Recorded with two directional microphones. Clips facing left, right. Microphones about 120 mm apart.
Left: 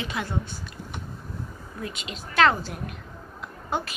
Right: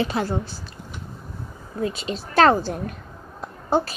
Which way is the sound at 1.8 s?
35° right (ahead or behind).